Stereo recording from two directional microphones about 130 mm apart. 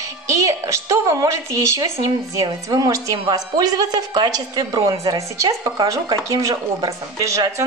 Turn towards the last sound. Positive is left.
turn(degrees=-25)  # may be behind; listen again after turning